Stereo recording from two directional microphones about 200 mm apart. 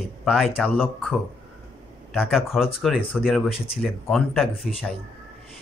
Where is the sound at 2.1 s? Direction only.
Centre (ahead or behind).